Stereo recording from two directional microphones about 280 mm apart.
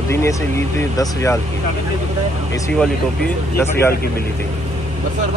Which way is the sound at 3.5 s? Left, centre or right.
Centre.